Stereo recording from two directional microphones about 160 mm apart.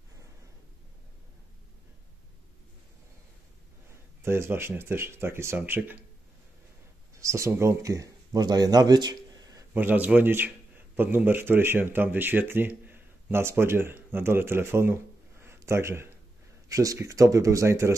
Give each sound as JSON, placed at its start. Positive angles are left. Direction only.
{"t": 4.2, "sound": "speech", "side_deg": -15}
{"t": 7.2, "sound": "speech", "side_deg": -20}
{"t": 9.8, "sound": "speech", "side_deg": -10}
{"t": 15.4, "sound": "a sound", "side_deg": -15}
{"t": 16.6, "sound": "speech", "side_deg": -20}